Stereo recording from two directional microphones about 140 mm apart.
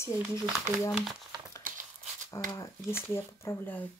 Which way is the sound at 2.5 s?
20° left (ahead or behind).